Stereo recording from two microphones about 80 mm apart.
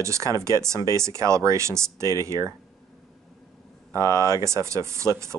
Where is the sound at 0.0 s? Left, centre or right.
Right.